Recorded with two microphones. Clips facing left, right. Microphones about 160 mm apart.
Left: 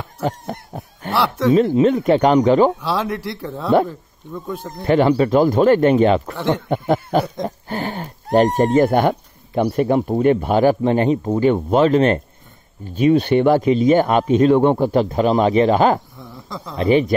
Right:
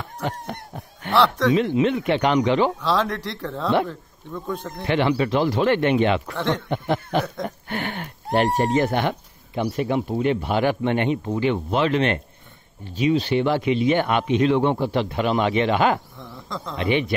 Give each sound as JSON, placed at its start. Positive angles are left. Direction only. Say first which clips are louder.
{"t": 0.2, "sound": "a sound", "louder": "left 5 dB", "side_deg": 40}
{"t": 1.1, "sound": "speech", "louder": "even", "side_deg": 5}
{"t": 1.5, "sound": "speech", "louder": "left 5 dB", "side_deg": 40}
{"t": 2.8, "sound": "speech", "louder": "left 1 dB", "side_deg": 10}
{"t": 4.8, "sound": "speech", "louder": "left 6 dB", "side_deg": 40}
{"t": 6.3, "sound": "speech", "louder": "left 4 dB", "side_deg": 5}
{"t": 6.7, "sound": "speech", "louder": "left 5 dB", "side_deg": 45}
{"t": 7.4, "sound": "speech", "louder": "left 4 dB", "side_deg": 35}
{"t": 8.7, "sound": "speech", "louder": "left 6 dB", "side_deg": 45}
{"t": 12.9, "sound": "speech", "louder": "left 6 dB", "side_deg": 55}
{"t": 16.2, "sound": "speech", "louder": "left 1 dB", "side_deg": 5}
{"t": 16.7, "sound": "speech", "louder": "left 7 dB", "side_deg": 40}